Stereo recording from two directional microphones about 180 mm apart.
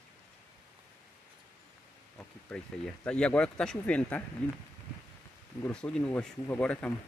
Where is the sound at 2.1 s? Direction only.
5° left (ahead or behind).